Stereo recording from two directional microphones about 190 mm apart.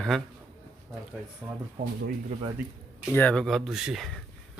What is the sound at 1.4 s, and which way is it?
Speech, 5° right (ahead or behind).